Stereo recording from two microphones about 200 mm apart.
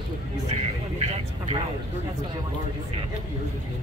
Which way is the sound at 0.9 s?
30° right (ahead or behind).